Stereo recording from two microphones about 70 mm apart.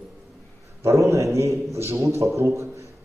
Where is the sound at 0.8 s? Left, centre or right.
Right.